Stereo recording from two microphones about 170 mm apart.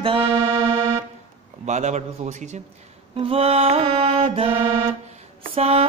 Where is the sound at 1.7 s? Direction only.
45° right (ahead or behind).